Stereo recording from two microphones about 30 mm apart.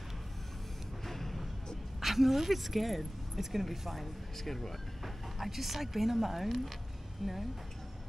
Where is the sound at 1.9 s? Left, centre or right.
Centre.